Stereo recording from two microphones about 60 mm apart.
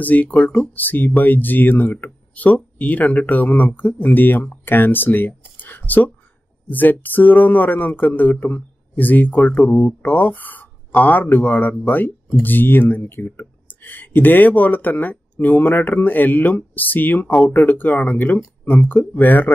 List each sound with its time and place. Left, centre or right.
0.0 s speech: left
5.6 s a sound: left
6.7 s speech: left